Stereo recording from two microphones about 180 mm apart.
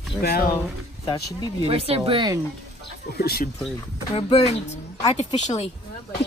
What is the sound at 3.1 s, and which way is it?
Speech, 60° left (ahead or behind).